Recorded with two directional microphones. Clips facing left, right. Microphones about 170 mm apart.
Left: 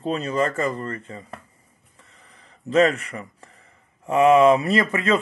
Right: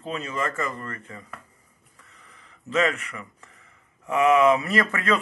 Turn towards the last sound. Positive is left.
turn(degrees=20)  # may be behind; listen again after turning